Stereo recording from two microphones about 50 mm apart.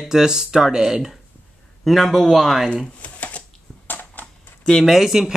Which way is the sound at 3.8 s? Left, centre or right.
Left.